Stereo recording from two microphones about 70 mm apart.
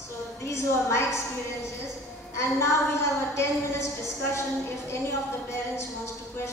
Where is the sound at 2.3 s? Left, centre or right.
Left.